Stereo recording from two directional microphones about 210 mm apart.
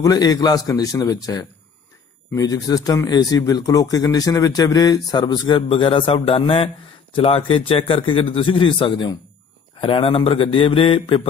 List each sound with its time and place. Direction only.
0.0 s a man's voice: 15° left (ahead or behind)